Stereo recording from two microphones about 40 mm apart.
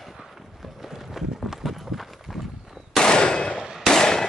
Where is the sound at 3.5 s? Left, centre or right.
Centre.